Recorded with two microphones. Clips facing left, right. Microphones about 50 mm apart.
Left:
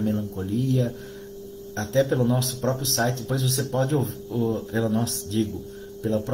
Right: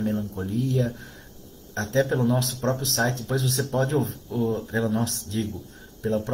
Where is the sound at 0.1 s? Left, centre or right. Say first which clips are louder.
Left 1 dB; centre.